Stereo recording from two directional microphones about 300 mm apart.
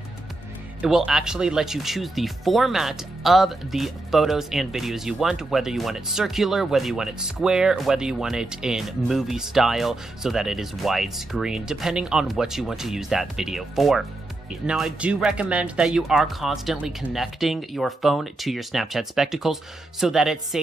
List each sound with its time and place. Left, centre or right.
0.7 s speech: centre